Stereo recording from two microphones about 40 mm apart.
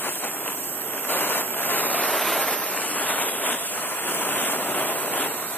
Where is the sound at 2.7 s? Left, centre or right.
Left.